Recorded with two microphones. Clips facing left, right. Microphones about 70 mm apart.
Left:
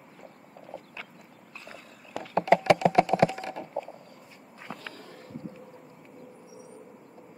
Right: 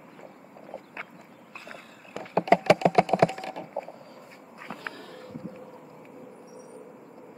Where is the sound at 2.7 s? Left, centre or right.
Right.